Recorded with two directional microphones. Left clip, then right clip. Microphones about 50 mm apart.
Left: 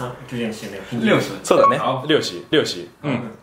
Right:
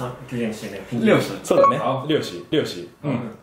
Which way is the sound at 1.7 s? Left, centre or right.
Left.